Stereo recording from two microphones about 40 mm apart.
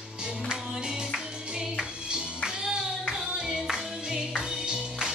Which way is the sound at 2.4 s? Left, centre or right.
Centre.